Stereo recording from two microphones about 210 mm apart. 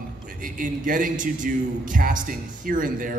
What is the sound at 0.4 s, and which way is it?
A man's voice, 40° right (ahead or behind).